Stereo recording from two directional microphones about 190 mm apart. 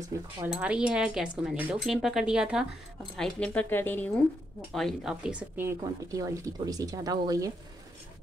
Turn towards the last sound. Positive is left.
turn(degrees=-20)  # may be behind; listen again after turning